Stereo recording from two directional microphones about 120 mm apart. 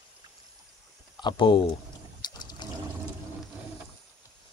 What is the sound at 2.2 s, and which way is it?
Water, 35° left (ahead or behind).